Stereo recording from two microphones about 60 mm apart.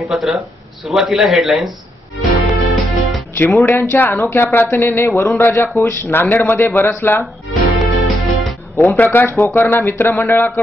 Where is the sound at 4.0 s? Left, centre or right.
Left.